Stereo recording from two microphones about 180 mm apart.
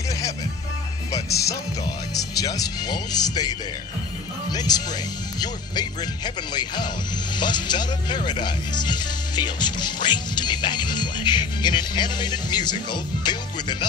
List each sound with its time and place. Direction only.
2.3 s speech: 20° left (ahead or behind)